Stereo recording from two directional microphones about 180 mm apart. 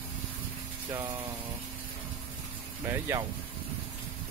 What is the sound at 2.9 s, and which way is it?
Speech, 15° right (ahead or behind).